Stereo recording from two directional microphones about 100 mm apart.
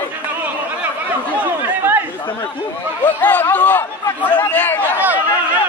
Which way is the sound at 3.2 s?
20° left (ahead or behind).